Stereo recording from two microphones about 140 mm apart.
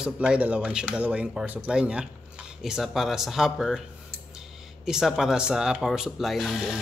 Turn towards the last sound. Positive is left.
turn(degrees=0)  # may be behind; listen again after turning